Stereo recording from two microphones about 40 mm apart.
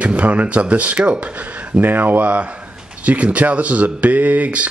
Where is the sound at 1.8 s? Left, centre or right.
Right.